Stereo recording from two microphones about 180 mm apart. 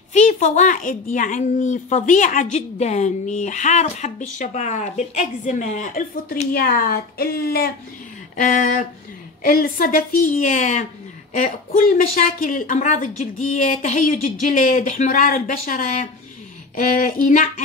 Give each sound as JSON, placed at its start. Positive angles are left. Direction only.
{"t": 0.1, "sound": "a woman's voice", "side_deg": 40}
{"t": 6.5, "sound": "speech", "side_deg": 55}
{"t": 8.4, "sound": "a woman's voice", "side_deg": 45}